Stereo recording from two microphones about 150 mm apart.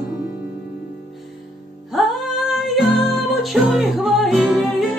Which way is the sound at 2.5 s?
Centre (ahead or behind).